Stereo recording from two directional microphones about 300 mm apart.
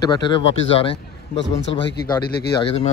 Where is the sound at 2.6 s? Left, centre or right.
Centre.